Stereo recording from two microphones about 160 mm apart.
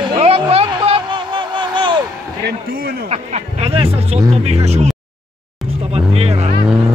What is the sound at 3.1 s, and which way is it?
Speech, 40° right (ahead or behind).